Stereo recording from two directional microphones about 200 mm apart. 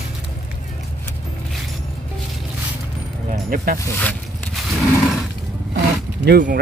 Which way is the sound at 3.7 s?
10° left (ahead or behind).